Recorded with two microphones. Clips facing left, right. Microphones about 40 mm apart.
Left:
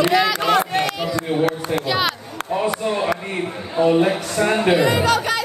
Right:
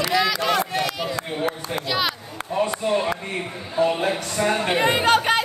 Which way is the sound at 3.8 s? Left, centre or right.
Centre.